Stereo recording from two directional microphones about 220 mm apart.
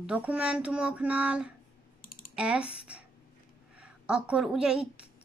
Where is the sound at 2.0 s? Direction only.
40° left (ahead or behind).